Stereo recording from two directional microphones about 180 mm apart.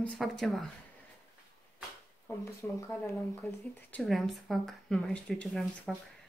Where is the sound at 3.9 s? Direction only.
Centre (ahead or behind).